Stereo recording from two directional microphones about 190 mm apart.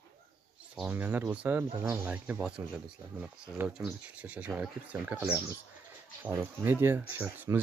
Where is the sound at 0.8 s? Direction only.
10° right (ahead or behind).